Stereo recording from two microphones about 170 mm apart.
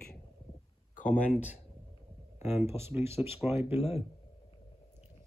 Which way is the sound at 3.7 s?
35° left (ahead or behind).